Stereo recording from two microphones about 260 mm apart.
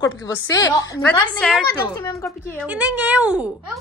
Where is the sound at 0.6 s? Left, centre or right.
Centre.